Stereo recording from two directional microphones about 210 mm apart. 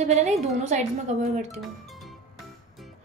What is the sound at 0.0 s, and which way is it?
A woman's voice, 35° right (ahead or behind).